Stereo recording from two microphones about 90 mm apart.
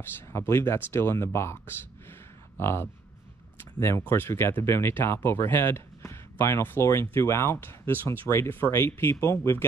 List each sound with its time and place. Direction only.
0.3 s speech: 30° left (ahead or behind)
4.0 s speech: 25° left (ahead or behind)